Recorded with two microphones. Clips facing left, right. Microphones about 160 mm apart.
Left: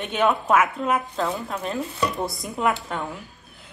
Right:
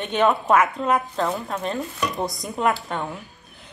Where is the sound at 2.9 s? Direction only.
5° left (ahead or behind).